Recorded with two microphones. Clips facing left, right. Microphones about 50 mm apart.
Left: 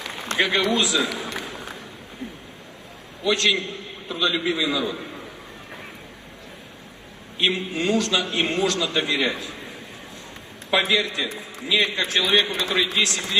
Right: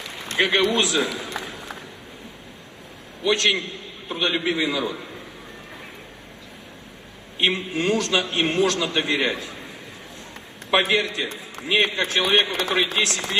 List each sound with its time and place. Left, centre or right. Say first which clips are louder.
0.0 s a sound: left 3 dB; left
0.4 s a man's voice: right 1 dB; right
1.1 s a man's voice: even; left
3.3 s a man's voice: right 1 dB; right
3.7 s a sound: even; right
7.3 s a man's voice: right 1 dB; right
10.7 s a man's voice: right 1 dB; right